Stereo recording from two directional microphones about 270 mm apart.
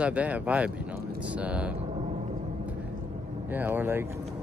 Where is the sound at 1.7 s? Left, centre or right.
Right.